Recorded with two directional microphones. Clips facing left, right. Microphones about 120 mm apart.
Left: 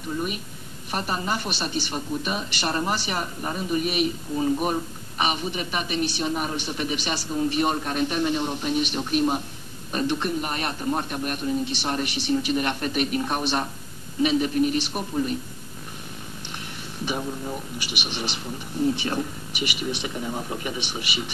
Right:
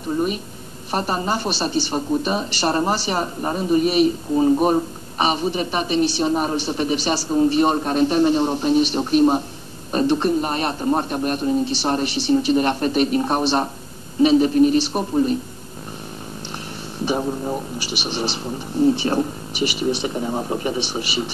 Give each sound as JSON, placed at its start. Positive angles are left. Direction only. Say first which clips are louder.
{"t": 0.1, "sound": "a woman's voice", "louder": "right 7 dB", "side_deg": -30}
{"t": 17.0, "sound": "a woman's voice", "louder": "right 7 dB", "side_deg": -35}